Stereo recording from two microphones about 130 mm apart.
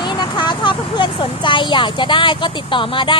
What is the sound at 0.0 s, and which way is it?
A woman's voice, 35° left (ahead or behind).